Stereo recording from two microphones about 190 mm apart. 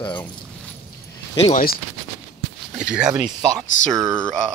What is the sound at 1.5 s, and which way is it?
Speech, 50° left (ahead or behind).